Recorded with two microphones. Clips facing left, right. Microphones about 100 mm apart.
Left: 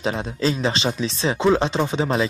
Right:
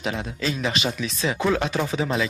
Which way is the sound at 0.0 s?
30° left (ahead or behind).